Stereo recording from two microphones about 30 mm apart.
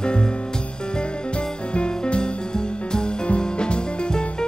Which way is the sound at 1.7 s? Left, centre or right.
Left.